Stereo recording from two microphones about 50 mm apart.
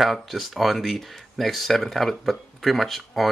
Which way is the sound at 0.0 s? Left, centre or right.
Centre.